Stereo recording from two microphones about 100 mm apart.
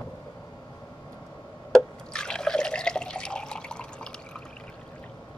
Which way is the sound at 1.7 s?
5° left (ahead or behind).